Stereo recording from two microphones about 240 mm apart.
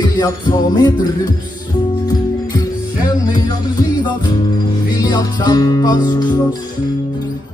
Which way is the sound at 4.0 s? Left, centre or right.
Centre.